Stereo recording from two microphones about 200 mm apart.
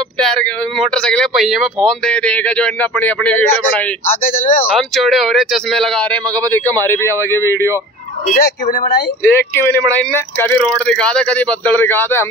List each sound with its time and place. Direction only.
0.2 s speech: centre (ahead or behind)
4.2 s speech: 40° left (ahead or behind)
4.7 s speech: centre (ahead or behind)
8.3 s speech: 50° left (ahead or behind)
9.2 s speech: 10° left (ahead or behind)